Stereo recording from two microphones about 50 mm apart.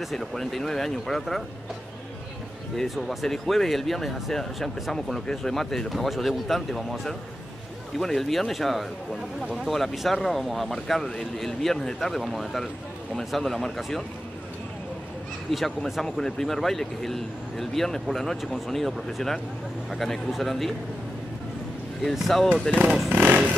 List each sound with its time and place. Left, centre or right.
0.0 s speech: centre
2.8 s speech: centre
8.0 s speech: centre
15.5 s speech: centre
22.1 s speech: centre
23.0 s vehicle: right